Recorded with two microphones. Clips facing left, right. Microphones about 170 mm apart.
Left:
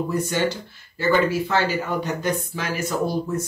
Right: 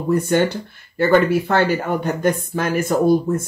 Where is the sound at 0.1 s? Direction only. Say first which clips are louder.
Right 6 dB; 55° right (ahead or behind).